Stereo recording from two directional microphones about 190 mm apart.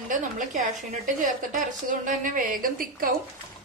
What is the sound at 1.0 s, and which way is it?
A woman's voice, 45° right (ahead or behind).